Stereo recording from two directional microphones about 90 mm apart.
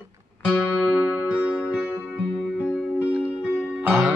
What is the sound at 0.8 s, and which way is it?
Music, 15° right (ahead or behind).